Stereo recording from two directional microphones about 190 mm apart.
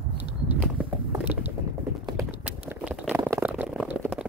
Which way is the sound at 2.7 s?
5° right (ahead or behind).